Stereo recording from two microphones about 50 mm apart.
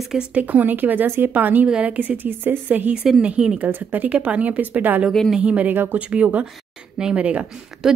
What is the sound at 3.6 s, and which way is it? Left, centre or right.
Speech, right.